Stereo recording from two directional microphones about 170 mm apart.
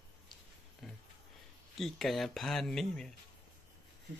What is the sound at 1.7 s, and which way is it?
Speech, centre (ahead or behind).